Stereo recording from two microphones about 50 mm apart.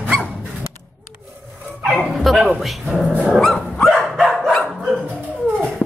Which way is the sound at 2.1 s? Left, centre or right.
Centre.